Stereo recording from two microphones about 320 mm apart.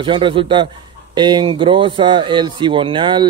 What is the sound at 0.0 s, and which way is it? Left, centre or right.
Speech, centre.